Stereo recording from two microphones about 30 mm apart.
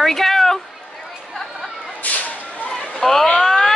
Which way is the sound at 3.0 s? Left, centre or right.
Centre.